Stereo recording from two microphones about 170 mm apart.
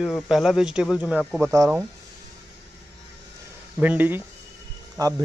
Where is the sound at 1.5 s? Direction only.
20° right (ahead or behind).